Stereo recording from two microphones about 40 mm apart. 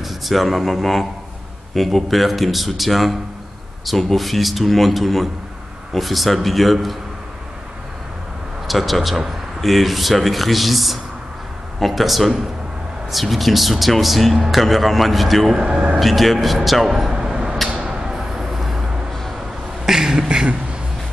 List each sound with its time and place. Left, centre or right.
0.0 s speech: centre
8.6 s speech: centre
15.5 s speech: centre
16.0 s speech: centre
17.7 s a sound: centre
18.1 s vehicle: centre
19.9 s beatboxing: centre
20.2 s beatboxing: right